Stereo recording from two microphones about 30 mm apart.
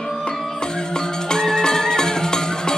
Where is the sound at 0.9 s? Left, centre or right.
Left.